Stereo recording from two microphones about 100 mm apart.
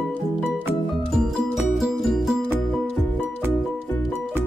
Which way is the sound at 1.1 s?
5° right (ahead or behind).